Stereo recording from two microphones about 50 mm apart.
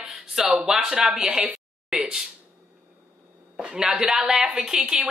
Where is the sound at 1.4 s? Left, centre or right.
Right.